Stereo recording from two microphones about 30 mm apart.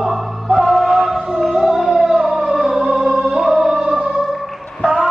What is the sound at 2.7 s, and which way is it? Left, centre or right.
Music, right.